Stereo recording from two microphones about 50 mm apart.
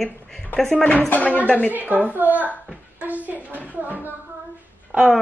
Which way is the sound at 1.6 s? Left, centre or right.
Right.